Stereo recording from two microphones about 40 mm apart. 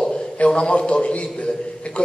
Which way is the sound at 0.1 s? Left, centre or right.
Left.